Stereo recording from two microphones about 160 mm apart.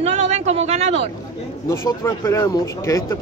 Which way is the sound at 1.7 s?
20° left (ahead or behind).